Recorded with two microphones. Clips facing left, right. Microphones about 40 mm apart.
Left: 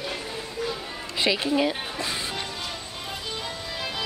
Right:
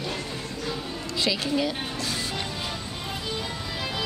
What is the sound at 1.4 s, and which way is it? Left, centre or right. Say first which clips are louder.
Speech: left 2 dB; left.